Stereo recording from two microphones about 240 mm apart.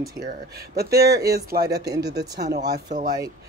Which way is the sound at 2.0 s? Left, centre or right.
Right.